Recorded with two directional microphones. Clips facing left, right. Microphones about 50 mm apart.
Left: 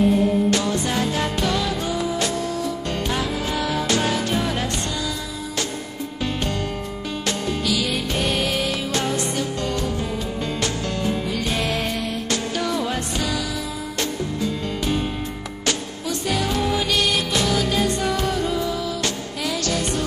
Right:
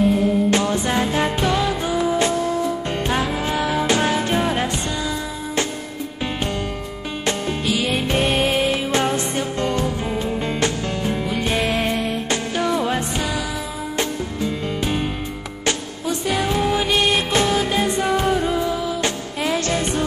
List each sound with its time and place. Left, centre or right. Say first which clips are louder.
0.5 s music: right 2 dB; right
7.2 s music: right 2 dB; right
11.6 s music: right 3 dB; centre
15.6 s music: right 2 dB; right